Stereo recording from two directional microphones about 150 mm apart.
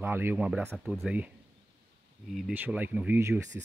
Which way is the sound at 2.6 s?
10° right (ahead or behind).